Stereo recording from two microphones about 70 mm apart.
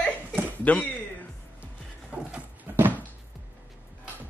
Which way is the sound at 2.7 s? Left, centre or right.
Right.